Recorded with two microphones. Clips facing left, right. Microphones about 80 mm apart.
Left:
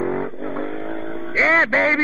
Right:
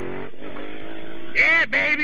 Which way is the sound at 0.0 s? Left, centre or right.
Left.